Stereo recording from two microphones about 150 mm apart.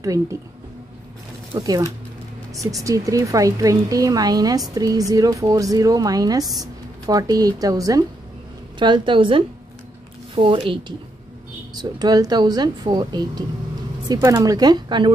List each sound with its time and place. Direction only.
0.0 s a woman's voice: 20° right (ahead or behind)
1.5 s a woman's voice: 25° right (ahead or behind)